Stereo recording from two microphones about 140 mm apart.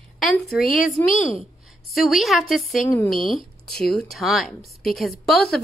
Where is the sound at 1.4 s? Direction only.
Centre (ahead or behind).